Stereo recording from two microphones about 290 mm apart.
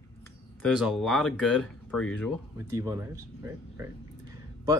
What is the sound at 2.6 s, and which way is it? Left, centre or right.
Speech, centre.